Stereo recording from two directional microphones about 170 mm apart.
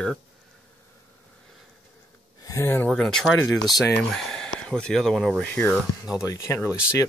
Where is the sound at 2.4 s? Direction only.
20° left (ahead or behind).